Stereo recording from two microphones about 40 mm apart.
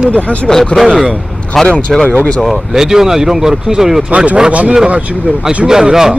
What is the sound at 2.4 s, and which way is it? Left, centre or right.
Speech, centre.